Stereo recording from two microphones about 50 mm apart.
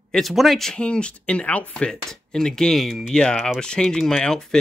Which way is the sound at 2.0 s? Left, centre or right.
Centre.